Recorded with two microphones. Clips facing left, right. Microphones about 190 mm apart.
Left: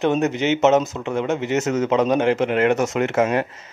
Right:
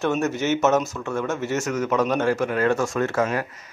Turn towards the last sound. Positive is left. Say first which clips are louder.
# left 4 dB
turn(degrees=20)  # may be behind; listen again after turning